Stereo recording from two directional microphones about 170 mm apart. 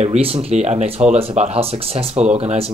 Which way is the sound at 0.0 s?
40° right (ahead or behind).